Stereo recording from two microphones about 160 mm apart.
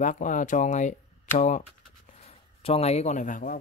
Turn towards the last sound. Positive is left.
turn(degrees=55)  # may be behind; listen again after turning